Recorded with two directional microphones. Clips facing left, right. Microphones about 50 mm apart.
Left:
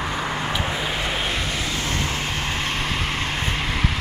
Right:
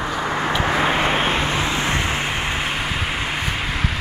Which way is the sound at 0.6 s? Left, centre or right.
Right.